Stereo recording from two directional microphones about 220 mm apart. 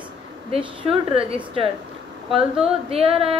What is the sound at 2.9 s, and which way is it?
Speech, 25° right (ahead or behind).